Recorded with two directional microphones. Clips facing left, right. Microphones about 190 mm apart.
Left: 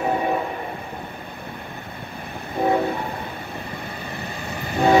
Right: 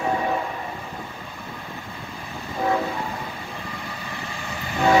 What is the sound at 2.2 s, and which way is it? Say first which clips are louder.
Train: left 1 dB; 60° left (ahead or behind).